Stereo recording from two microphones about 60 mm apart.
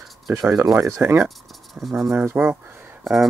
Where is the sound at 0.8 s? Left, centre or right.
Right.